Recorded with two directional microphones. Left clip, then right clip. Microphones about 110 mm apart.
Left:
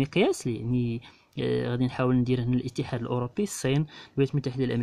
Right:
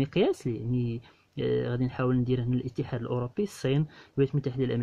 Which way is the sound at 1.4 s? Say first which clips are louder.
Left 1 dB; 35° left (ahead or behind).